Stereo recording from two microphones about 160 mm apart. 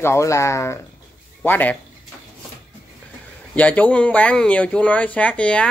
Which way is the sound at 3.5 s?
10° left (ahead or behind).